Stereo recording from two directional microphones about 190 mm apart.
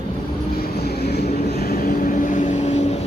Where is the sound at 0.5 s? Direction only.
55° left (ahead or behind).